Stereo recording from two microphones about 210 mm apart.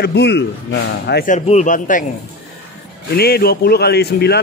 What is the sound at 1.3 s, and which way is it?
Speech, 35° left (ahead or behind).